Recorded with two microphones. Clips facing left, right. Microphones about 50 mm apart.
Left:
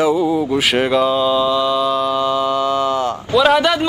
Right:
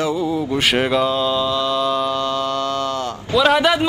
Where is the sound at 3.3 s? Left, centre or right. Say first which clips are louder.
Left 1 dB; centre.